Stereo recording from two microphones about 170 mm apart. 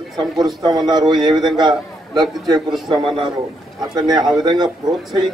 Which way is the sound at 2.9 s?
25° right (ahead or behind).